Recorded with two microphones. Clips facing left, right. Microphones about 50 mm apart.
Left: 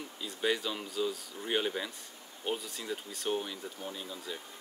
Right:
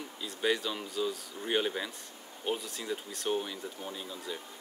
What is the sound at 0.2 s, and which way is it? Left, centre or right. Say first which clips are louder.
Speech: right 1 dB; centre.